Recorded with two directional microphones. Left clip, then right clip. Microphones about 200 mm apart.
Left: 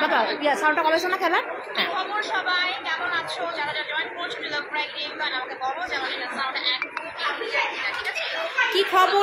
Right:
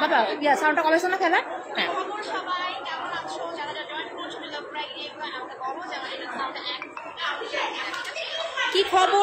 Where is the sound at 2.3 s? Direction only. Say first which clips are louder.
Left 5 dB; 30° left (ahead or behind).